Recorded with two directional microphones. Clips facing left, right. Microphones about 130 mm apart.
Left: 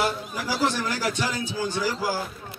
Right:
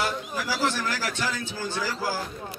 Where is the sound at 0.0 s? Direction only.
20° left (ahead or behind).